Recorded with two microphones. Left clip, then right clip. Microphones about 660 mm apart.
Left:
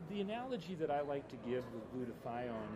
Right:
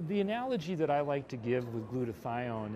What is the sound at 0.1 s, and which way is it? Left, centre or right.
Speech, right.